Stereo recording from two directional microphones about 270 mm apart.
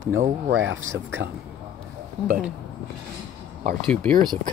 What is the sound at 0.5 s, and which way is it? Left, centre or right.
Speech, right.